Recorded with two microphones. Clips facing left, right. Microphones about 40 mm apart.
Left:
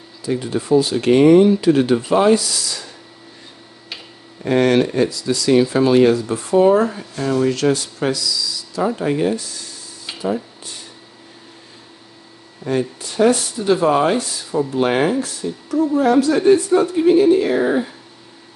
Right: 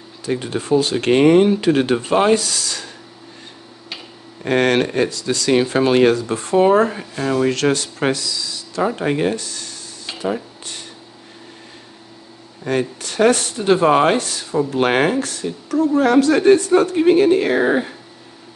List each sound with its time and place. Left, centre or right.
0.2 s speech: right
4.5 s speech: right
10.2 s a sound: right
12.6 s speech: right